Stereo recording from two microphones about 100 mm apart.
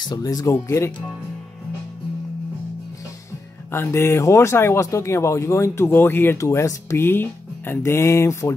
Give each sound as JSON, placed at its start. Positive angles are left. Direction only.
{"t": 0.0, "sound": "speech", "side_deg": 40}
{"t": 0.7, "sound": "speech", "side_deg": 25}
{"t": 3.7, "sound": "speech", "side_deg": 25}